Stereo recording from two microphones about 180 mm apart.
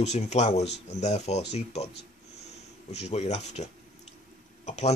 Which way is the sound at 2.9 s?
35° left (ahead or behind).